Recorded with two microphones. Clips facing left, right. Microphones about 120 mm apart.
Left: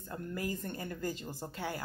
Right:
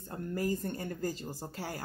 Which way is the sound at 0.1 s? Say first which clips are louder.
Right 4 dB; 40° right (ahead or behind).